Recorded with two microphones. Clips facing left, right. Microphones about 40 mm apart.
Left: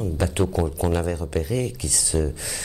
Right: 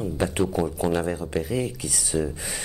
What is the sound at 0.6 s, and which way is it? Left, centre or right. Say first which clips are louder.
Speech: right 1 dB; centre.